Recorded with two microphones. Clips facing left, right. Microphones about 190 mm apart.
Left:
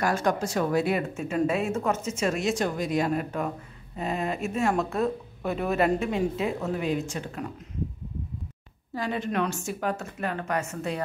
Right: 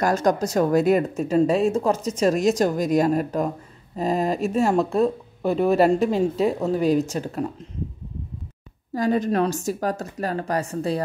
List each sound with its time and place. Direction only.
0.0 s speech: 40° right (ahead or behind)
8.9 s speech: 40° right (ahead or behind)